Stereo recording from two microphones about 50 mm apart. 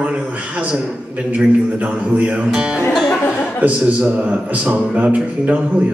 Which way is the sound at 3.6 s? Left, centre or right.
Right.